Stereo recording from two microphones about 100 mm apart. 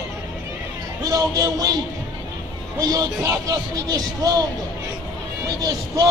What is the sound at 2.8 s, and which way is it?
A man's voice, 35° right (ahead or behind).